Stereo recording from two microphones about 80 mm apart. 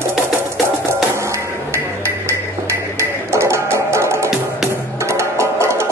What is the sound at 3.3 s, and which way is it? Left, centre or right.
Music, right.